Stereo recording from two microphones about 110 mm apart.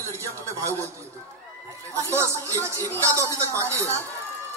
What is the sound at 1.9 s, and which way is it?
Speech, 25° right (ahead or behind).